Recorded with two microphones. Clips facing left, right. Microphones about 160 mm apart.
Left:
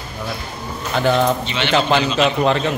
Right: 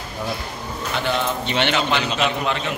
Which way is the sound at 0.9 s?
40° left (ahead or behind).